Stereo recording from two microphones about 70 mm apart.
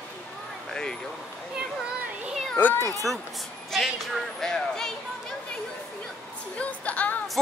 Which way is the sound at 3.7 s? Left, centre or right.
Centre.